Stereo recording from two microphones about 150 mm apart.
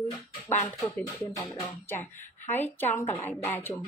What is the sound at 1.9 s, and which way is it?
Speech, 15° left (ahead or behind).